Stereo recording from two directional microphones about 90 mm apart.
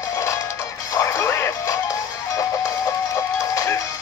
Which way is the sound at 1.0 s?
30° left (ahead or behind).